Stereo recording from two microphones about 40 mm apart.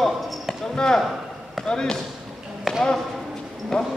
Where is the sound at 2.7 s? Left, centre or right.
Centre.